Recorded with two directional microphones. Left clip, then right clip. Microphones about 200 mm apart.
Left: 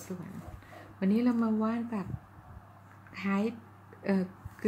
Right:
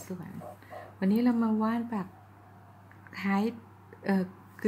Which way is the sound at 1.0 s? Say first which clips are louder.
Right 1 dB; 15° right (ahead or behind).